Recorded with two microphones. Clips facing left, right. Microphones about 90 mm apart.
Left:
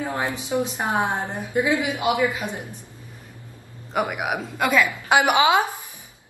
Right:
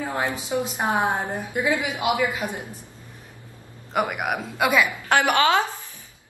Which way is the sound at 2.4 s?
15° right (ahead or behind).